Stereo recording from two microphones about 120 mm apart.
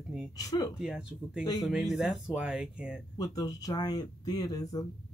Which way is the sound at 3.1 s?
30° left (ahead or behind).